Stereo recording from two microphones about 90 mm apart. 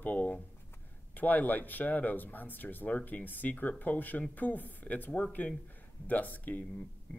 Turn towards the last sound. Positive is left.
turn(degrees=15)  # may be behind; listen again after turning